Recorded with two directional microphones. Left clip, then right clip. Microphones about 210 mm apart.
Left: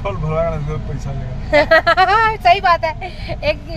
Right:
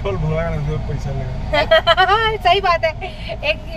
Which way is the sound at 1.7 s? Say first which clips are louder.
Right 1 dB; 35° left (ahead or behind).